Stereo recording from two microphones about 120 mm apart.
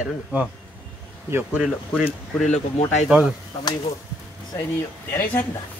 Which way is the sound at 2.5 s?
80° left.